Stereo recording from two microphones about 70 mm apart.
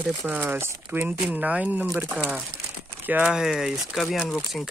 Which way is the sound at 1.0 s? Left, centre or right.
Right.